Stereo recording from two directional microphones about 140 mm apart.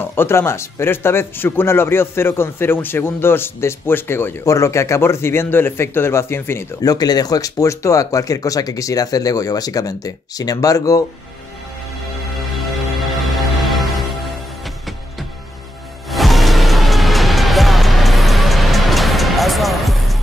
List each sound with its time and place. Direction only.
0.0 s speech: 15° left (ahead or behind)
13.2 s music: centre (ahead or behind)